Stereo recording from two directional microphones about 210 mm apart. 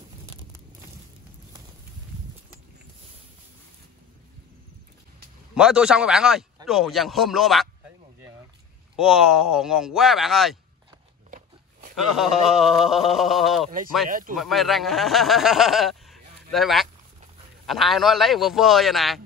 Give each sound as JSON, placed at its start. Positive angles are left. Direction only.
{"t": 5.5, "sound": "speech", "side_deg": -5}
{"t": 8.9, "sound": "speech", "side_deg": 0}
{"t": 11.2, "sound": "biting", "side_deg": -40}
{"t": 12.2, "sound": "speech", "side_deg": 0}
{"t": 14.0, "sound": "speech", "side_deg": -40}
{"t": 14.3, "sound": "speech", "side_deg": 0}